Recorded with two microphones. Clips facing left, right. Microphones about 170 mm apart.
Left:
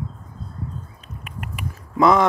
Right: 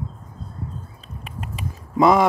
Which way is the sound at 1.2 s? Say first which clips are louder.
Even; 20° right (ahead or behind).